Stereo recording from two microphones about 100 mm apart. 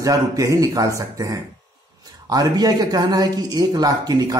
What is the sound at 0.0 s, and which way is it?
A man's voice, 35° right (ahead or behind).